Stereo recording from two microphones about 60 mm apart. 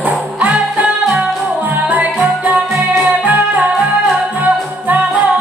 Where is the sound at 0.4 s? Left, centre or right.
Right.